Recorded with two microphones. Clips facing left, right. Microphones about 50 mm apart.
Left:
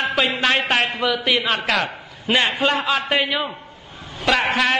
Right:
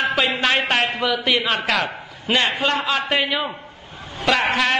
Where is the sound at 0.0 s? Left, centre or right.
Centre.